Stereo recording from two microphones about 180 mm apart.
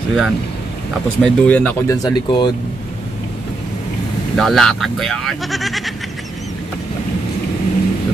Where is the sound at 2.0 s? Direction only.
25° left (ahead or behind).